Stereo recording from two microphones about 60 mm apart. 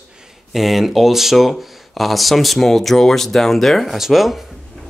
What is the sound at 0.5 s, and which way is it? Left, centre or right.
Speech, centre.